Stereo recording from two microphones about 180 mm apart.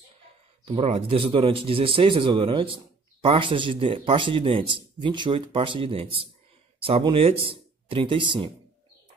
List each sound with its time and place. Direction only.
0.7 s a man's voice: 35° right (ahead or behind)